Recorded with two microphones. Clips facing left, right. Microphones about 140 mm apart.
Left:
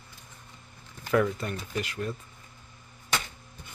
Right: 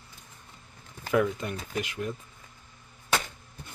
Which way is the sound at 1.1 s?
15° right (ahead or behind).